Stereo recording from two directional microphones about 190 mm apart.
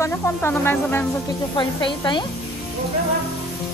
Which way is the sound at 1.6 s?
25° left (ahead or behind).